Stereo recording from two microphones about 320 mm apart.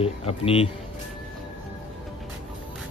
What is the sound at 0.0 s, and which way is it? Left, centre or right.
Speech, centre.